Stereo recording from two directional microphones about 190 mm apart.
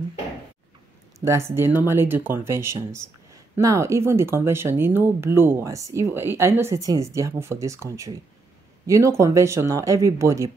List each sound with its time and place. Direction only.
1.2 s speech: 15° right (ahead or behind)